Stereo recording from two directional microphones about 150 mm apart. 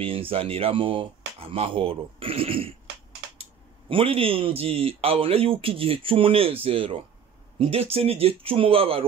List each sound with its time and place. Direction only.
0.0 s speech: 35° right (ahead or behind)
3.9 s speech: 40° right (ahead or behind)